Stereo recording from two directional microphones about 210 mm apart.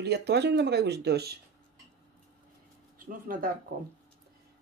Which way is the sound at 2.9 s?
40° right (ahead or behind).